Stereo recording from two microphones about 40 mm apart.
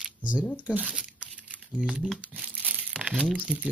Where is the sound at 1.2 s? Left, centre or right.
Right.